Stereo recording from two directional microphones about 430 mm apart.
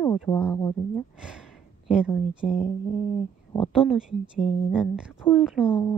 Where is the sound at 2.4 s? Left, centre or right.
Centre.